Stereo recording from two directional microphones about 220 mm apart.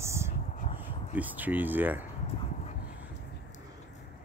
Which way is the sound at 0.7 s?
5° right (ahead or behind).